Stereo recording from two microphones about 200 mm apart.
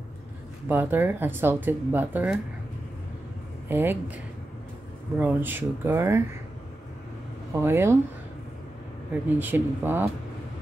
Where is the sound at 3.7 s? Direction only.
10° right (ahead or behind).